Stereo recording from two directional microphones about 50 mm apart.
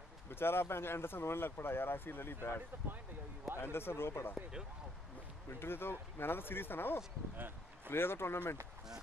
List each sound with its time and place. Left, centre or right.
0.3 s speech: left
2.7 s speech: right
3.5 s speech: left
5.6 s speech: left
7.3 s speech: right
7.9 s speech: left